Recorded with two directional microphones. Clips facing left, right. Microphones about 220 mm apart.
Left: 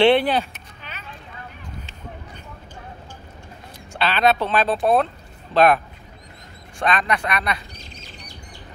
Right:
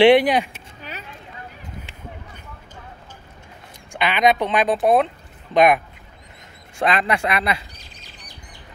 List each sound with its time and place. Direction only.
0.0 s speech: 15° right (ahead or behind)
0.5 s vehicle: 40° right (ahead or behind)
3.9 s speech: 15° right (ahead or behind)
6.8 s speech: 25° right (ahead or behind)